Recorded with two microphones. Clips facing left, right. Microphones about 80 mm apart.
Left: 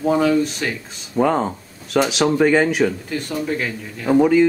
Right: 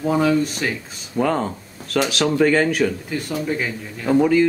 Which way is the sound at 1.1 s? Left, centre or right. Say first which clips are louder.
Left 3 dB; centre.